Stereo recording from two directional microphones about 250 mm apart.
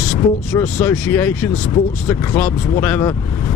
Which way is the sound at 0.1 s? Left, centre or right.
Centre.